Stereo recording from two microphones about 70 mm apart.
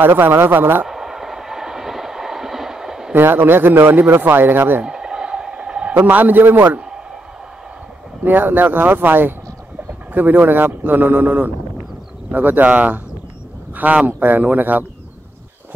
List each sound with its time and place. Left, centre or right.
0.0 s speech: right
0.8 s train: centre
3.2 s speech: right
4.8 s a sound: centre
6.0 s a man's voice: right
8.2 s a man's voice: right